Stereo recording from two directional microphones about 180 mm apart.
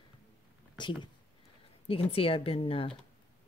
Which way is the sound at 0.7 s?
25° left (ahead or behind).